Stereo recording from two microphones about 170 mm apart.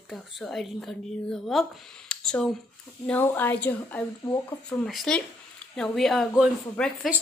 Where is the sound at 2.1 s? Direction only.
5° left (ahead or behind).